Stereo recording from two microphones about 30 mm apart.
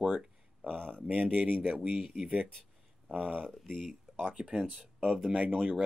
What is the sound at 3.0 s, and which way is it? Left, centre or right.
Speech, centre.